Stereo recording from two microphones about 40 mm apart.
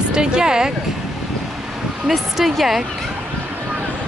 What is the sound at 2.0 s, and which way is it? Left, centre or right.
Speech, centre.